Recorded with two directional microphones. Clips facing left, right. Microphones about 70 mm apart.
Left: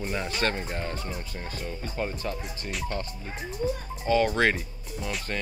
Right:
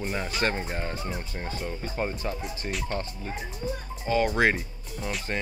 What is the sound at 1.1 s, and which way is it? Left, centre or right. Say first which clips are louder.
Speech: right 2 dB; right.